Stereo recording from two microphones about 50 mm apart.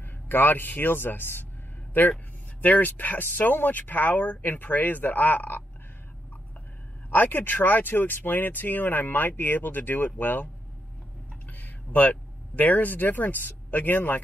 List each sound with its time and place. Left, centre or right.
0.0 s a man's voice: left
7.1 s speech: left
11.5 s speech: left